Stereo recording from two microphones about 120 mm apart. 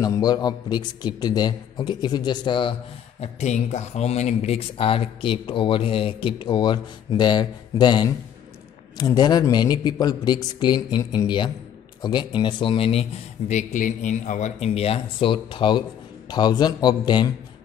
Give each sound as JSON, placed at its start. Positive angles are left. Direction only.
{"t": 0.0, "sound": "a man's voice", "side_deg": 35}
{"t": 3.2, "sound": "a man's voice", "side_deg": 70}